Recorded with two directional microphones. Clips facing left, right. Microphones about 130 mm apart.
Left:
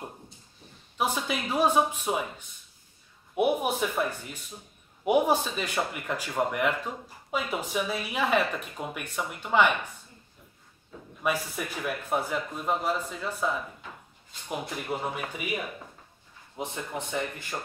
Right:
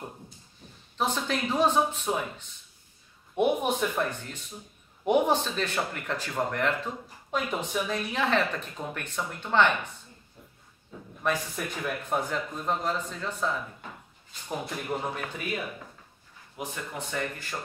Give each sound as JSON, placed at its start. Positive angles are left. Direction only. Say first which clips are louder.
{"t": 0.9, "sound": "speech", "louder": "even", "side_deg": 10}
{"t": 11.2, "sound": "speech", "louder": "even", "side_deg": 5}